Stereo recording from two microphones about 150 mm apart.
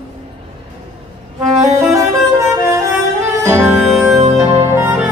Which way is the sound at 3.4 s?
15° right (ahead or behind).